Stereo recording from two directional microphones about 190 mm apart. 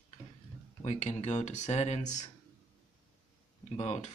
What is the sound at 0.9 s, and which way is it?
Speech, 40° left (ahead or behind).